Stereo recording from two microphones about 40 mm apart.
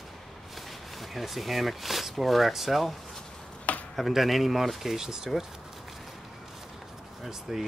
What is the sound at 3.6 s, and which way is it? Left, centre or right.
Chop, left.